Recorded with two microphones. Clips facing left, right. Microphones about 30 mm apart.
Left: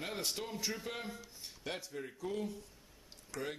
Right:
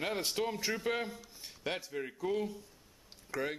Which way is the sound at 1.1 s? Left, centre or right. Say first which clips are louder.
Right 1 dB; centre.